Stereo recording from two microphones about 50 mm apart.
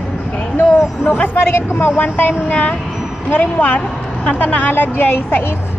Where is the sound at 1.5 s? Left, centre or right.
Left.